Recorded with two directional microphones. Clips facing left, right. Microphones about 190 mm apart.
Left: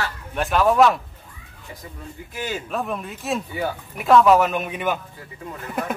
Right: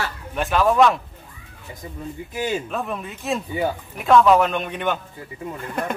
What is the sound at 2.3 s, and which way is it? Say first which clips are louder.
Speech: right 4 dB; 20° right (ahead or behind).